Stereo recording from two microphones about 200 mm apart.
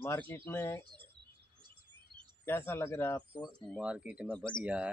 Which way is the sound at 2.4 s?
10° left (ahead or behind).